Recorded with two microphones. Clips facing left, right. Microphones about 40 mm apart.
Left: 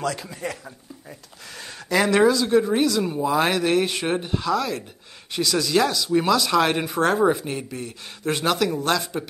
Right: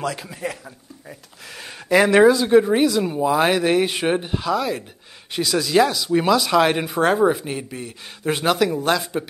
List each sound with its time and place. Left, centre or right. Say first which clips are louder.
0.0 s speech: right 1 dB; centre
1.6 s speech: right 5 dB; centre